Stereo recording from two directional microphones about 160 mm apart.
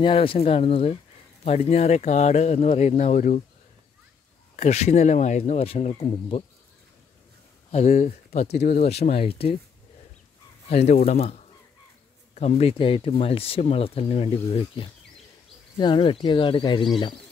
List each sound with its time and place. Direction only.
0.0 s speech: 35° left (ahead or behind); by 3.4 s 50° left (ahead or behind)
4.6 s speech: 45° left (ahead or behind)
7.7 s speech: 45° left (ahead or behind)
10.7 s speech: 40° left (ahead or behind)